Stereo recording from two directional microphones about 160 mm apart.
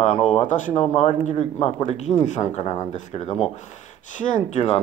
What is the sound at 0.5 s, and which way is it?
Speech, 50° left (ahead or behind).